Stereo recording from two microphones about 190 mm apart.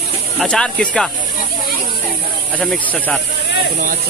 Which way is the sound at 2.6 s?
5° left (ahead or behind).